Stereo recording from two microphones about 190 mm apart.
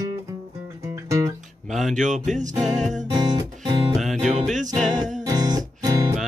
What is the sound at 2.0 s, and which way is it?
Music, 40° right (ahead or behind).